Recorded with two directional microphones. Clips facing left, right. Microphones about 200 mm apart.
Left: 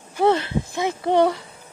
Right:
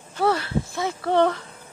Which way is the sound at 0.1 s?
20° left (ahead or behind).